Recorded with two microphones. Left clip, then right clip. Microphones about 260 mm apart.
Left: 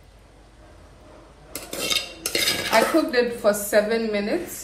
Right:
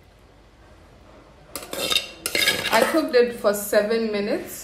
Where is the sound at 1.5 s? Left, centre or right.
Right.